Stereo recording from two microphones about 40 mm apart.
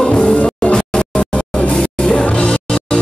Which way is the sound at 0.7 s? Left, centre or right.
Centre.